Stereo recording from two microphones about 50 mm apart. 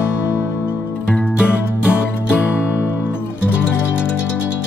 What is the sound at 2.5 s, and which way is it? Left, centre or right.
Music, left.